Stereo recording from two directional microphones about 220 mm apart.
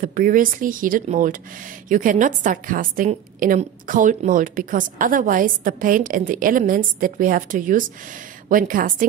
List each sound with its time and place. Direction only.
0.0 s a woman's voice: 40° right (ahead or behind)